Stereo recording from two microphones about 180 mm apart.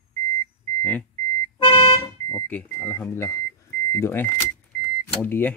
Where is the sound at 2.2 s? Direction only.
10° left (ahead or behind).